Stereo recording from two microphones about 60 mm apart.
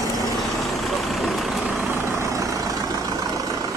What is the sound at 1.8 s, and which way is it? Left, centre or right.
Vehicle, right.